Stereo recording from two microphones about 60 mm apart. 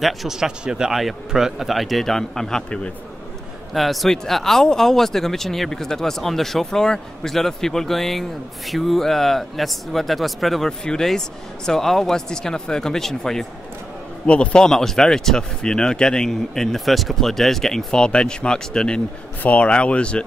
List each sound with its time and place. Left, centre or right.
0.0 s speech: centre
3.7 s speech: centre
14.2 s speech: centre
19.4 s speech: left